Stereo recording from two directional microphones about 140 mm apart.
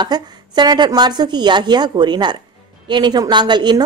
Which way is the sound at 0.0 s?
30° right (ahead or behind).